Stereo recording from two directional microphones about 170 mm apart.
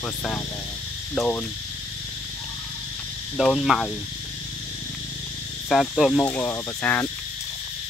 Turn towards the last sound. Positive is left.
turn(degrees=10)  # may be behind; listen again after turning